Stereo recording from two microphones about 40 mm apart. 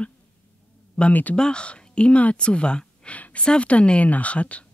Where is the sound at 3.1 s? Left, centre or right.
Left.